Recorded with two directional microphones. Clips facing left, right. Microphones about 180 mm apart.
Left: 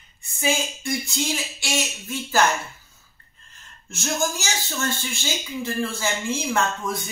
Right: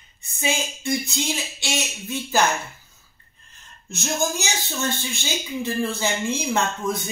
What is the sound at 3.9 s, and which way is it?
Speech, 20° right (ahead or behind).